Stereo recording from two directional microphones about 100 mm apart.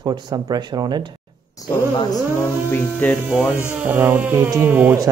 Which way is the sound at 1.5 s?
35° left (ahead or behind).